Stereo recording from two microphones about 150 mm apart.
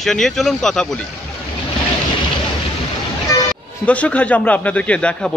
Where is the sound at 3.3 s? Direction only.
25° left (ahead or behind).